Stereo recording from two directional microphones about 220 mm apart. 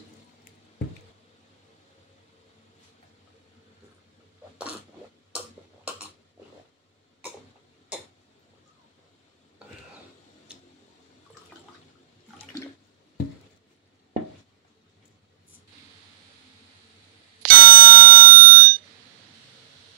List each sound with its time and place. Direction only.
17.4 s bicycle bell: 40° right (ahead or behind)